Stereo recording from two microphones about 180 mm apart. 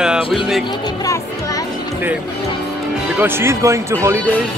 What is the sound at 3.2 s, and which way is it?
Speech, 15° right (ahead or behind).